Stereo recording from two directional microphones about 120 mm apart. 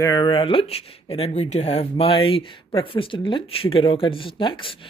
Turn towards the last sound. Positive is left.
turn(degrees=45)  # may be behind; listen again after turning